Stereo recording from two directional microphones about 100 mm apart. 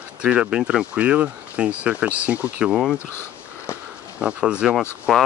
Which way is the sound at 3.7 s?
25° left (ahead or behind).